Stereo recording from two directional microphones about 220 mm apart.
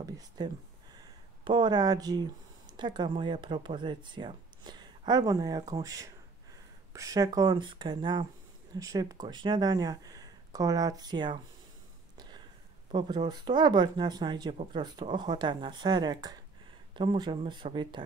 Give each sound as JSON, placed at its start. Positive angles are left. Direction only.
{"t": 0.0, "sound": "speech", "side_deg": -15}
{"t": 12.2, "sound": "a sound", "side_deg": -20}
{"t": 12.9, "sound": "speech", "side_deg": -20}